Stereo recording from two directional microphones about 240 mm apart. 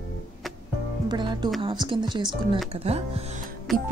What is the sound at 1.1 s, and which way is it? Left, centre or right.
Speech, centre.